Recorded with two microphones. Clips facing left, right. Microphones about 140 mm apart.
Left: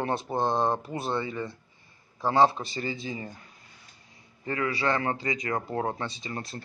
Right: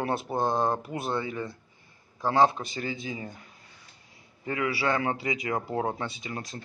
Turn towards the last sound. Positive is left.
turn(degrees=0)  # may be behind; listen again after turning